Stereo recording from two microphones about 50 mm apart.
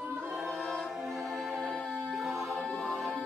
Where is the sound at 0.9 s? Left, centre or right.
Centre.